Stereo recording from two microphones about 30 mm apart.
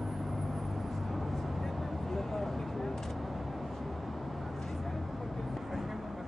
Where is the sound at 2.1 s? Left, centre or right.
Centre.